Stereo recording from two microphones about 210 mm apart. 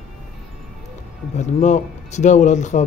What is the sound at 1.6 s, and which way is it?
Speech, 35° left (ahead or behind).